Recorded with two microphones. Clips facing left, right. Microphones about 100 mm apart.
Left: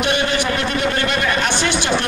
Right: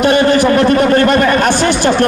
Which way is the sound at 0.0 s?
45° right (ahead or behind).